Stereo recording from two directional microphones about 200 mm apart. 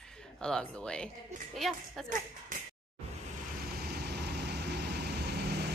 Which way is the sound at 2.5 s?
40° right (ahead or behind).